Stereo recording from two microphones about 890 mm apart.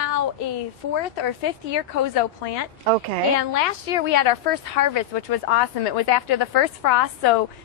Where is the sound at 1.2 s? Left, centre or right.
Left.